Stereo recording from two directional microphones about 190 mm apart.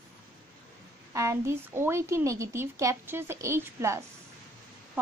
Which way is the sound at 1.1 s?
15° right (ahead or behind).